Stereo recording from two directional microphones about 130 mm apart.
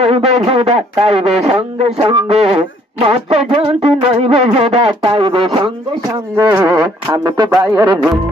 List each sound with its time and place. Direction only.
0.0 s speech: 50° right (ahead or behind)
6.3 s a sound: 20° right (ahead or behind)
7.2 s speech: 35° right (ahead or behind)
7.5 s a man's voice: 5° right (ahead or behind)